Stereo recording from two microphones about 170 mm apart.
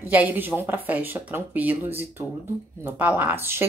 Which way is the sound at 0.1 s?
10° right (ahead or behind).